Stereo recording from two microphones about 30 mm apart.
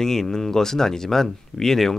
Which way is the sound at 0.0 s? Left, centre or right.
Centre.